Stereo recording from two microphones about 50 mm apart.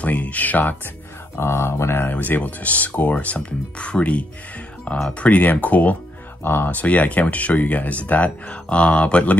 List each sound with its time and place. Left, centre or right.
0.0 s speech: left
1.3 s music: left
2.0 s speech: left
6.4 s speech: left
6.7 s speech: left